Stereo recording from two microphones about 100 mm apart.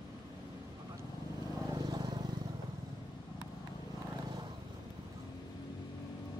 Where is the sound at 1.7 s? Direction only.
40° right (ahead or behind).